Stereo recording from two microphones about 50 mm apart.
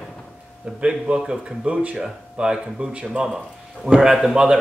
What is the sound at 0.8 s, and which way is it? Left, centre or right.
Speech, right.